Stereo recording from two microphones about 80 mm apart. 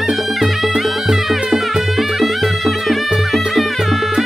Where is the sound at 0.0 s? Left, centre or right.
Centre.